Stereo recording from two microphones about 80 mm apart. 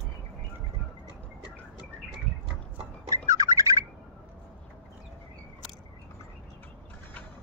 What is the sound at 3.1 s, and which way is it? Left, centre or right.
Bird, right.